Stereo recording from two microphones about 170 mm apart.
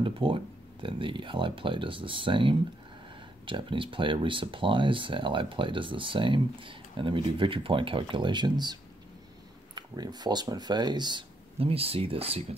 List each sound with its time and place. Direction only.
0.0 s speech: 30° right (ahead or behind)
9.8 s speech: 25° right (ahead or behind)